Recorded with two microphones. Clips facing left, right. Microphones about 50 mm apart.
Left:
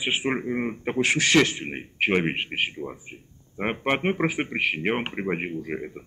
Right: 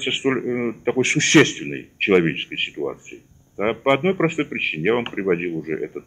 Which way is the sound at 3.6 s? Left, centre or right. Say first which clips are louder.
Right 6 dB; right.